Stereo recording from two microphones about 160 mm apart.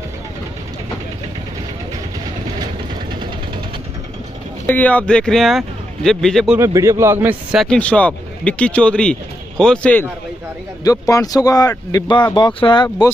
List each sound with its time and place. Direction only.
4.6 s speech: 10° left (ahead or behind)
6.5 s a man's voice: 20° right (ahead or behind)
7.6 s speech: 5° left (ahead or behind)
10.8 s speech: 20° left (ahead or behind)